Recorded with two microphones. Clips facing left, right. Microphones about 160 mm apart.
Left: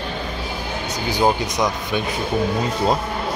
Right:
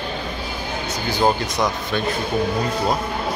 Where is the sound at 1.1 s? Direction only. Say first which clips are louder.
Left 1 dB; 15° left (ahead or behind).